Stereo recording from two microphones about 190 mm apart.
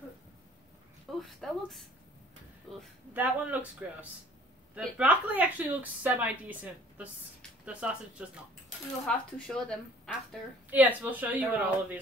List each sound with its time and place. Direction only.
1.2 s a woman's voice: centre (ahead or behind)
3.1 s a woman's voice: 10° right (ahead or behind)
10.7 s a woman's voice: 10° right (ahead or behind)